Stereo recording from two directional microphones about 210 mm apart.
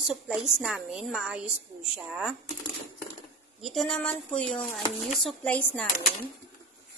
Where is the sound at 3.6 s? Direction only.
Centre (ahead or behind).